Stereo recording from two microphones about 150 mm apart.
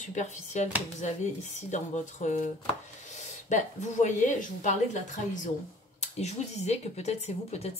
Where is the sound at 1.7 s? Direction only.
55° left (ahead or behind).